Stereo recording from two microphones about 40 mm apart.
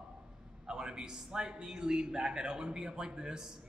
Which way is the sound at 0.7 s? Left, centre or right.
Centre.